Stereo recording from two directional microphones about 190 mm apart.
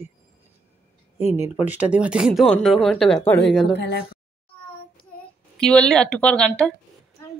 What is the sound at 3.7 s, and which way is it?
Speech, 60° left (ahead or behind).